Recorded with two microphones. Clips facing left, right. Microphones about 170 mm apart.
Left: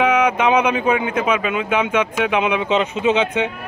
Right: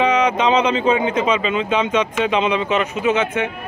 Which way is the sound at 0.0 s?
10° left (ahead or behind).